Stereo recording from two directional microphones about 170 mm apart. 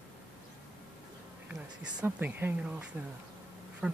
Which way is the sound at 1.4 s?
10° right (ahead or behind).